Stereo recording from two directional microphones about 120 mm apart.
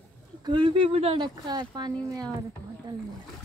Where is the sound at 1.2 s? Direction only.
35° right (ahead or behind).